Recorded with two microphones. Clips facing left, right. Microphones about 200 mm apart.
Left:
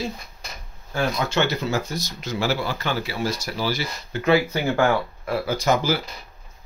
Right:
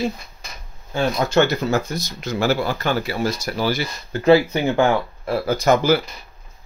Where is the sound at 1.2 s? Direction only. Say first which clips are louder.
Right 5 dB; 45° right (ahead or behind).